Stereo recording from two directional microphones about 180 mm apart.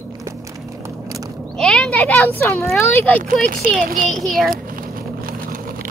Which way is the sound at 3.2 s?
50° right (ahead or behind).